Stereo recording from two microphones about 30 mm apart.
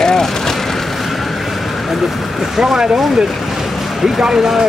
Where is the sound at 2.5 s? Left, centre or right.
Centre.